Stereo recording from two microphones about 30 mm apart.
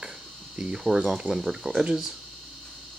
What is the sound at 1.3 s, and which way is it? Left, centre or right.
Speech, centre.